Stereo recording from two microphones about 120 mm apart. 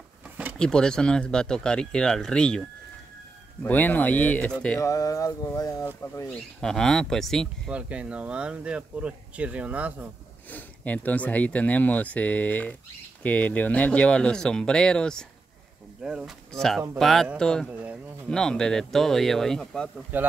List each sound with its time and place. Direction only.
0.6 s speech: 5° left (ahead or behind)
3.6 s speech: 15° left (ahead or behind)
4.7 s mantra: 25° left (ahead or behind)
6.6 s speech: 5° left (ahead or behind)
7.7 s speech: 10° right (ahead or behind)
10.5 s speech: 15° left (ahead or behind)
16.0 s speech: 5° right (ahead or behind)
16.5 s speech: 5° left (ahead or behind)
20.1 s speech: 15° right (ahead or behind)